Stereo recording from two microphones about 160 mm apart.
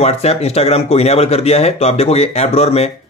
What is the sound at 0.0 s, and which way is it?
Speech, 40° left (ahead or behind).